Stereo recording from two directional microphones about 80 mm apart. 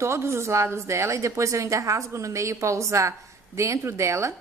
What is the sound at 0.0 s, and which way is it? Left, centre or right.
A woman's voice, right.